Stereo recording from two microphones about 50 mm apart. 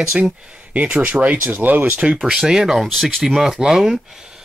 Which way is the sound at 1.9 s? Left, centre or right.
Right.